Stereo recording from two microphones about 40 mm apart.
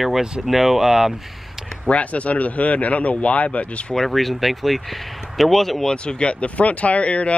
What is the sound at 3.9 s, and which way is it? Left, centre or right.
Speech, centre.